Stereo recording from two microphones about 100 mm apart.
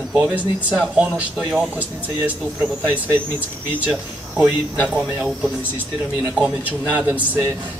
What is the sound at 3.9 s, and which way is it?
Speech, 10° right (ahead or behind).